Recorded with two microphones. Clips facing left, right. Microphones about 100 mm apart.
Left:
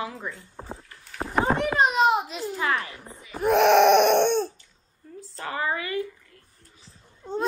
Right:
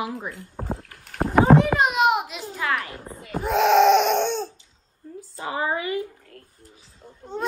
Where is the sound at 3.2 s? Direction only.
50° right (ahead or behind).